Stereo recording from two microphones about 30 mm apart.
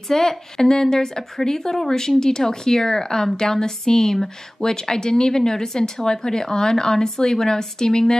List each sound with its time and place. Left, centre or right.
0.1 s speech: centre